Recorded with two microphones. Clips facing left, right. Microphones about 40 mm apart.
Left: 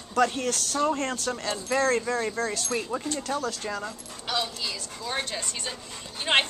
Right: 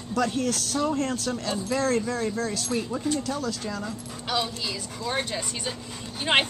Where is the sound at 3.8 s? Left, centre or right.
Centre.